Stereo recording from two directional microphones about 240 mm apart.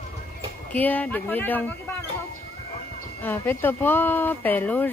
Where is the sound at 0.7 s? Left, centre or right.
Centre.